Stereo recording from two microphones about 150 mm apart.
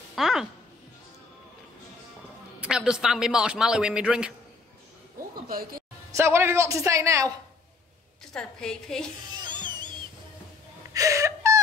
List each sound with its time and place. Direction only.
0.1 s speech: centre (ahead or behind)
2.6 s a man's voice: 5° right (ahead or behind)
5.5 s speech: 75° right (ahead or behind)
6.1 s speech: 15° right (ahead or behind)
8.3 s a man's voice: 5° left (ahead or behind)
9.4 s music: 30° right (ahead or behind)
10.9 s whimper: 20° right (ahead or behind)